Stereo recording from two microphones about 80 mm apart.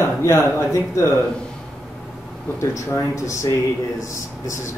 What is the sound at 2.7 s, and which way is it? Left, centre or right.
Speech, left.